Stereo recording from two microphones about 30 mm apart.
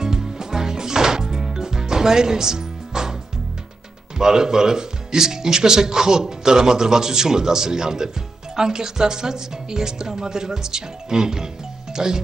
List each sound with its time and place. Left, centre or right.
0.0 s music: right
4.2 s speech: centre